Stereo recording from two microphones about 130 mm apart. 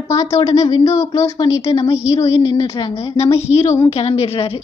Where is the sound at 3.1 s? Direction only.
55° left (ahead or behind).